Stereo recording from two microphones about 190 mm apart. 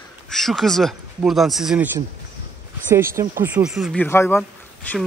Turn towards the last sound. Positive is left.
turn(degrees=10)  # may be behind; listen again after turning